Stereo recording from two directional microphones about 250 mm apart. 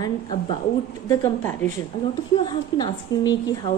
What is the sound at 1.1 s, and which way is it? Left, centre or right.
A woman's voice, centre.